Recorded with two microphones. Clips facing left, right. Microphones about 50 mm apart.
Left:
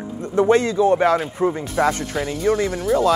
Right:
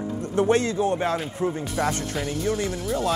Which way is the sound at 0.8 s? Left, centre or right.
Left.